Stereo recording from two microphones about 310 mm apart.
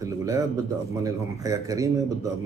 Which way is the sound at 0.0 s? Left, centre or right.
Centre.